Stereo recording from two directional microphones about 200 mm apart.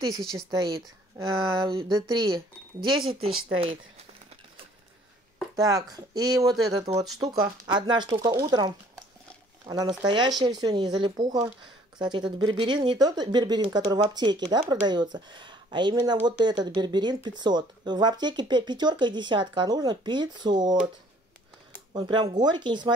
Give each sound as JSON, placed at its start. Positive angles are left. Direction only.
{"t": 0.1, "sound": "a woman's voice", "side_deg": 0}
{"t": 0.5, "sound": "speech", "side_deg": -20}
{"t": 3.3, "sound": "speech", "side_deg": -90}
{"t": 5.6, "sound": "speech", "side_deg": -20}
{"t": 21.9, "sound": "speech", "side_deg": -20}